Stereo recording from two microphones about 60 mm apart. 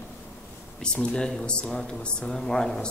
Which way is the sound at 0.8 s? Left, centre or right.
Centre.